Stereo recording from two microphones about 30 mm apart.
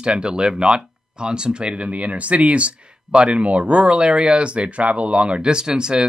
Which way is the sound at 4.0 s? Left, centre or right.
Right.